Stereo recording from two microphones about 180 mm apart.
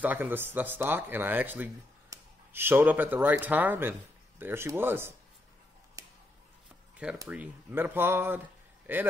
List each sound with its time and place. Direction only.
0.0 s speech: 10° right (ahead or behind)
6.0 s a sound: 20° right (ahead or behind)
7.2 s speech: 10° right (ahead or behind)